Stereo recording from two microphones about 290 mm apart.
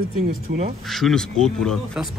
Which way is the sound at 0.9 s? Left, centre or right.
Centre.